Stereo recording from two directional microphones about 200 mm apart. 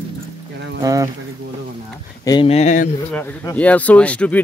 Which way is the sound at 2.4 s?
35° left (ahead or behind).